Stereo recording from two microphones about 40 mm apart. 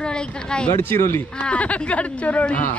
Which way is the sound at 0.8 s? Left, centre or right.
Left.